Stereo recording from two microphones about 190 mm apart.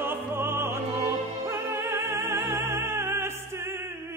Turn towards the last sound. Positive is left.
turn(degrees=-15)  # may be behind; listen again after turning